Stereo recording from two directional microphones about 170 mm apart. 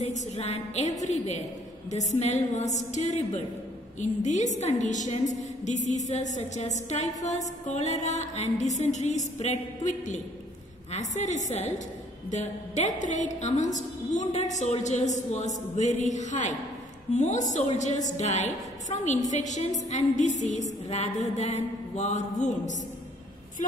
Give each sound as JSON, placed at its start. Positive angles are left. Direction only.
{"t": 0.0, "sound": "a woman's voice", "side_deg": 40}